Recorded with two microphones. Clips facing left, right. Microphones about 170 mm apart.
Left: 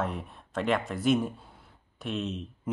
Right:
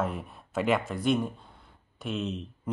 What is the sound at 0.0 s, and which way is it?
Speech, centre (ahead or behind).